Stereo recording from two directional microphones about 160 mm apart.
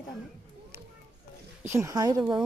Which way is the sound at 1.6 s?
20° right (ahead or behind).